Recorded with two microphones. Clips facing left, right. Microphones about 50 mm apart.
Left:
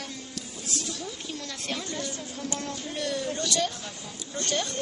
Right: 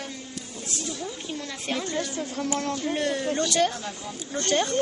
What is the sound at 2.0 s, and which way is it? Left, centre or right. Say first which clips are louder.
Speech: right 6 dB; right.